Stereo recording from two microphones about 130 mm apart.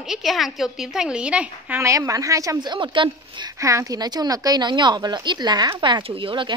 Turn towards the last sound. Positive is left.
turn(degrees=-40)  # may be behind; listen again after turning